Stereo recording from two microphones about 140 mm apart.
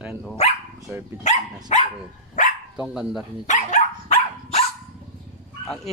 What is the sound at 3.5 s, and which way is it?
Dog, 55° left (ahead or behind).